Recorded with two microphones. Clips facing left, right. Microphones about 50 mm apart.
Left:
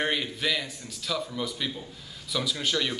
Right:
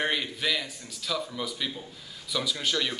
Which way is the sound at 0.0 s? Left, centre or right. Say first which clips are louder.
Left 1 dB; centre.